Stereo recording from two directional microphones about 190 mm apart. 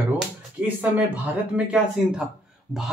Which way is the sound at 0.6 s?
10° right (ahead or behind).